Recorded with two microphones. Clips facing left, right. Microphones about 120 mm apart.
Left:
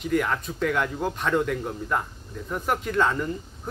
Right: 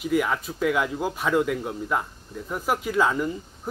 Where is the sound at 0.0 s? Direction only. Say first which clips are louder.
Right 1 dB; 5° right (ahead or behind).